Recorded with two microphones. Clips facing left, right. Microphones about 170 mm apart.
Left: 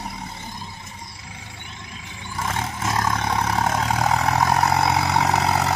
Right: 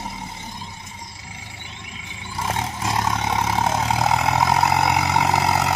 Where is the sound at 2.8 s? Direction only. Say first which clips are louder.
Even; 20° right (ahead or behind).